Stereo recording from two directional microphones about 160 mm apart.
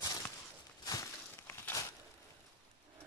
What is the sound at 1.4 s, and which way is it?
Crushing, 15° left (ahead or behind).